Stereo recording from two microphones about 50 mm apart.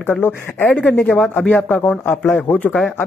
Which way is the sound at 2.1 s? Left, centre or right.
Left.